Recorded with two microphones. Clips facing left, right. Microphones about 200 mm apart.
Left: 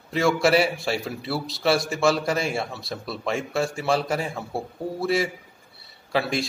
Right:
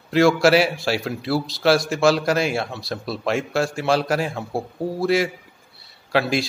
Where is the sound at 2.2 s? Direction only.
85° right.